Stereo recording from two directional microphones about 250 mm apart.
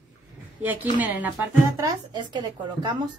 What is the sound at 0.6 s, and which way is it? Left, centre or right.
A woman's voice, centre.